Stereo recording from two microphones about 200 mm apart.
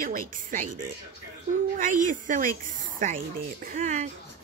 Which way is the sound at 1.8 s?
40° right (ahead or behind).